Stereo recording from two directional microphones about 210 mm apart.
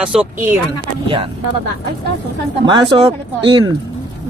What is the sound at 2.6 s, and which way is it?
Speech, 25° right (ahead or behind).